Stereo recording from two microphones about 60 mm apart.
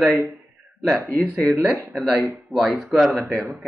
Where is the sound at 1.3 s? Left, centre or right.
Centre.